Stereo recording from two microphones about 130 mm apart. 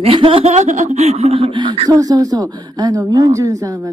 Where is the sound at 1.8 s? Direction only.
30° right (ahead or behind).